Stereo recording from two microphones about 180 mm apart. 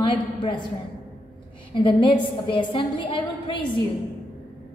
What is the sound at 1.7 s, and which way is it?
A woman's voice, 25° left (ahead or behind).